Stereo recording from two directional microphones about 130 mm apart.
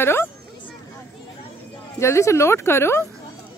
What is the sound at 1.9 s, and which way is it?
Speech, 20° left (ahead or behind).